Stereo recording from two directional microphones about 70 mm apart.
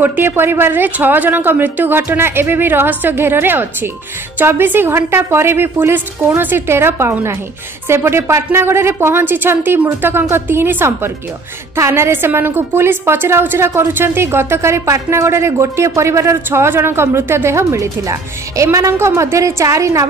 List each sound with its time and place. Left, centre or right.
0.0 s a woman's voice: right
16.4 s a woman's voice: right